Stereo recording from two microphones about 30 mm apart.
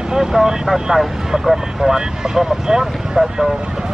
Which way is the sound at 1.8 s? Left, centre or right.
Centre.